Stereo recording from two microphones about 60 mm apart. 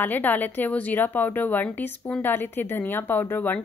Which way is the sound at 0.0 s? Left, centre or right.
Left.